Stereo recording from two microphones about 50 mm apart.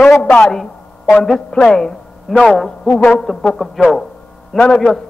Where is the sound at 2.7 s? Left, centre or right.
Left.